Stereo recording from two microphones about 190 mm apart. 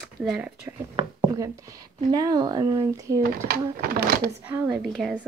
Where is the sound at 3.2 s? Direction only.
50° right (ahead or behind).